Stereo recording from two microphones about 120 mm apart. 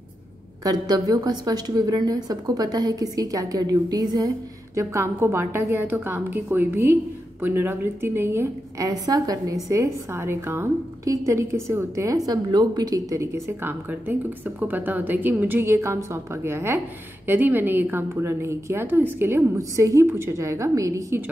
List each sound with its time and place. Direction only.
0.7 s a woman's voice: 30° right (ahead or behind)
4.7 s a woman's voice: 20° right (ahead or behind)
12.3 s a woman's voice: 35° right (ahead or behind)